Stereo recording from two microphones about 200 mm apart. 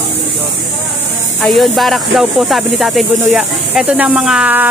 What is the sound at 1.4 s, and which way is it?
Speech, centre (ahead or behind).